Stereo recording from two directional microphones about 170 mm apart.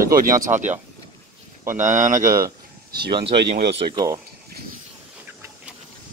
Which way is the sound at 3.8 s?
25° right (ahead or behind).